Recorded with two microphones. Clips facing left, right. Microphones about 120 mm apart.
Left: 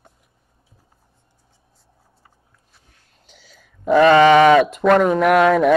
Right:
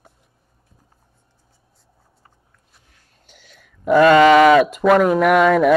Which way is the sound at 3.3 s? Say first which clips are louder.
Even; centre (ahead or behind).